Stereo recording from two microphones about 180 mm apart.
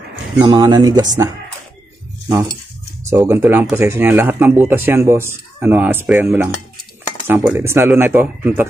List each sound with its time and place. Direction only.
0.1 s speech: 25° right (ahead or behind)
3.1 s speech: 15° right (ahead or behind)
6.1 s cutlery: 5° right (ahead or behind)
7.2 s speech: 10° right (ahead or behind)